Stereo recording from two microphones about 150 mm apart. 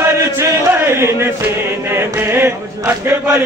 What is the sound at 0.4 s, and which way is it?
Chant, 20° right (ahead or behind).